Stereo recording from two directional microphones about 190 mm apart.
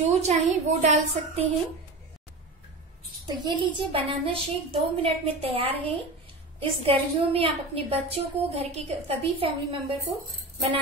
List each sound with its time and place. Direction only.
0.0 s a woman's voice: 35° right (ahead or behind)
3.3 s a child's voice: 25° right (ahead or behind)